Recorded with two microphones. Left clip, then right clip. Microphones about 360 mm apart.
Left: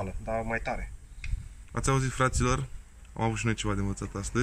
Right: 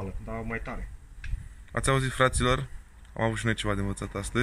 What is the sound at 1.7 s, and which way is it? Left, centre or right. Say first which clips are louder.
Speech: right 3 dB; centre.